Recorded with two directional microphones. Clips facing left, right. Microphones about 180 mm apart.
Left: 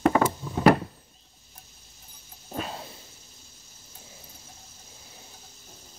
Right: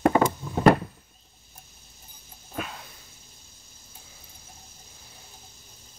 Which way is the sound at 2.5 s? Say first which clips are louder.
Left 2 dB; 30° left (ahead or behind).